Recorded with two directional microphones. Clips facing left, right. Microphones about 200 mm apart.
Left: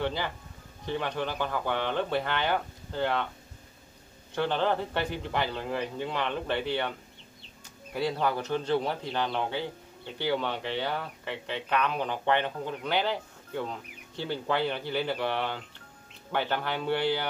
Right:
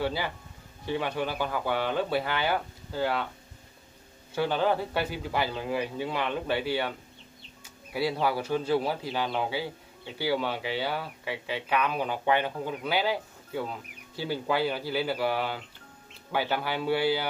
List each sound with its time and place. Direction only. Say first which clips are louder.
0.0 s a man's voice: right 1 dB; 5° right (ahead or behind)
4.4 s a man's voice: right 1 dB; 5° right (ahead or behind)
7.9 s a man's voice: right 1 dB; 5° right (ahead or behind)